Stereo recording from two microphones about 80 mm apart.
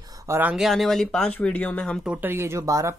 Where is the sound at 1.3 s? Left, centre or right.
Centre.